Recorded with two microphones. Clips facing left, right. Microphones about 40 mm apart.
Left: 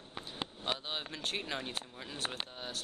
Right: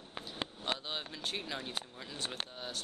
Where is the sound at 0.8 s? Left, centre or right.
Centre.